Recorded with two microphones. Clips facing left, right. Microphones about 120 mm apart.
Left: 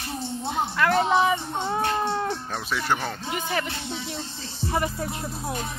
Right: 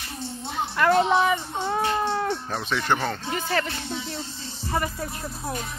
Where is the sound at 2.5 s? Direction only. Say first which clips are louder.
Right 2 dB; 5° left (ahead or behind).